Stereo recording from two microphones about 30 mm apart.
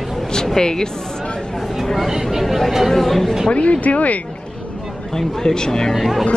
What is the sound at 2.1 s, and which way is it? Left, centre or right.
Speech, centre.